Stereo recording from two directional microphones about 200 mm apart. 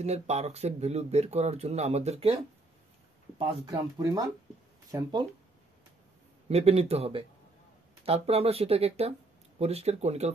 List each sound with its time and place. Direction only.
0.0 s speech: 35° right (ahead or behind)
3.3 s speech: 20° right (ahead or behind)
6.5 s speech: 30° right (ahead or behind)